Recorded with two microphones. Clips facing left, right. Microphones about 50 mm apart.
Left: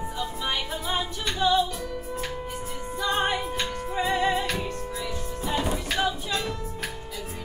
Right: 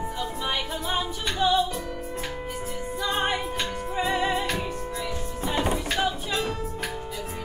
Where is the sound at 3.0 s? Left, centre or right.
Centre.